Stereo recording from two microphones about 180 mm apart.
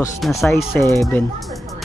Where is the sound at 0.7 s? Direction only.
15° left (ahead or behind).